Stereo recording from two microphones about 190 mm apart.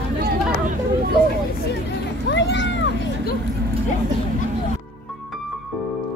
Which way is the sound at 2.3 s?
70° left (ahead or behind).